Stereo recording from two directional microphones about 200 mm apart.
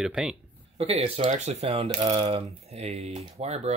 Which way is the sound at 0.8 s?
30° right (ahead or behind).